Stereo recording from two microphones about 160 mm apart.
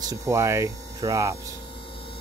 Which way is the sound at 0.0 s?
20° right (ahead or behind).